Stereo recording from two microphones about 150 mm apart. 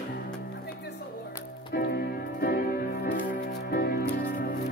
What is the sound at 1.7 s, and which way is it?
Music, 90° left.